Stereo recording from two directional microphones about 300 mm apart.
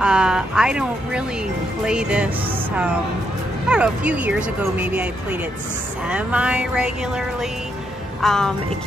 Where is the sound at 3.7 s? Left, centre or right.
Centre.